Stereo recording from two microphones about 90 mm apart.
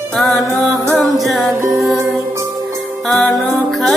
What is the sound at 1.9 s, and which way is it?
Music, 35° right (ahead or behind).